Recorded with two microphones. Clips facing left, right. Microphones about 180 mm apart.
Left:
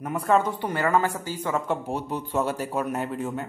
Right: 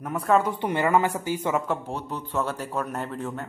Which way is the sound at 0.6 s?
20° right (ahead or behind).